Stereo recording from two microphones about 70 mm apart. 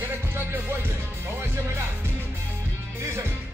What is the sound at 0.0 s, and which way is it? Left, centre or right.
Music, right.